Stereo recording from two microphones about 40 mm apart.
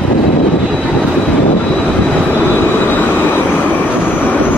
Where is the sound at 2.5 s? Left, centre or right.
Left.